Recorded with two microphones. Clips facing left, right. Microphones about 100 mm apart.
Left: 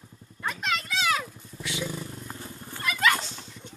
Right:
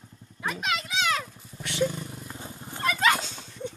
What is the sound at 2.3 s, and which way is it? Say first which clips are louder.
Purr: right 1 dB; 20° right (ahead or behind).